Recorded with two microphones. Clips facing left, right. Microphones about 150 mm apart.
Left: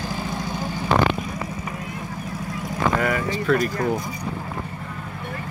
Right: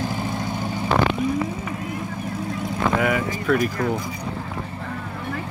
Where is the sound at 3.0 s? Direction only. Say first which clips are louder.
Right 2 dB; 5° right (ahead or behind).